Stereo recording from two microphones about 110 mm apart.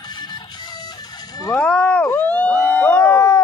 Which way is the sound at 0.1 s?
40° left (ahead or behind).